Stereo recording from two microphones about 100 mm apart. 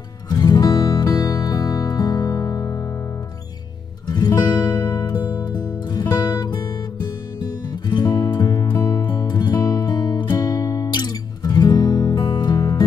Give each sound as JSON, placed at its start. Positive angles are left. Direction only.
{"t": 0.3, "sound": "music", "side_deg": 40}
{"t": 4.1, "sound": "music", "side_deg": 40}
{"t": 7.9, "sound": "music", "side_deg": 45}